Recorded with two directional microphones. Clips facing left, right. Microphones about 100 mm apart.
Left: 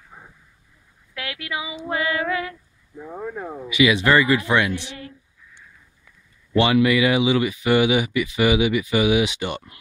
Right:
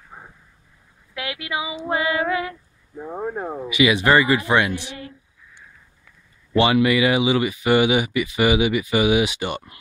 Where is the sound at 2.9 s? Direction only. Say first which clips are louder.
Right 3 dB; 35° right (ahead or behind).